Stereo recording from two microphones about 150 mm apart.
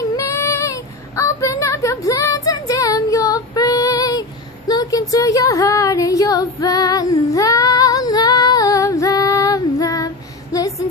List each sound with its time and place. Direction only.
0.1 s child singing: 20° left (ahead or behind)